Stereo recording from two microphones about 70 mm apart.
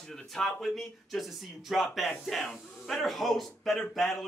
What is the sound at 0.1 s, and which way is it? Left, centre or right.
Speech, centre.